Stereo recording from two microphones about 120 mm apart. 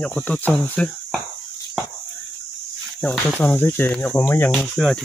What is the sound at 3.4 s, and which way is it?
Speech, 15° left (ahead or behind).